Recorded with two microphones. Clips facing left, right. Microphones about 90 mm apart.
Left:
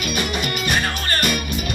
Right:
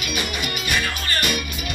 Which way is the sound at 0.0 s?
40° left (ahead or behind).